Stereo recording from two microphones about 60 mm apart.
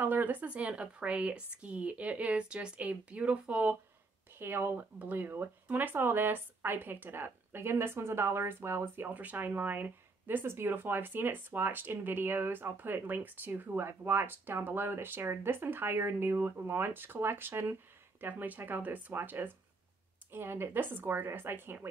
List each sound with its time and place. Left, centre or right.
0.0 s speech: right
4.4 s speech: right
9.1 s speech: right